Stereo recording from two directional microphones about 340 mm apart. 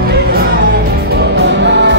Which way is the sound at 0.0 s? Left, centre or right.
Right.